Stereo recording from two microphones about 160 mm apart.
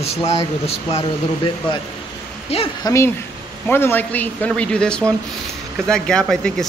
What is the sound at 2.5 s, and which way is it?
Speech, 40° left (ahead or behind).